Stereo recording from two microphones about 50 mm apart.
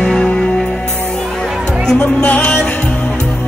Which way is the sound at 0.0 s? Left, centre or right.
Centre.